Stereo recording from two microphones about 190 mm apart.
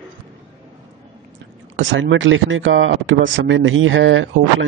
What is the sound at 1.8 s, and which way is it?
Speech, 85° right.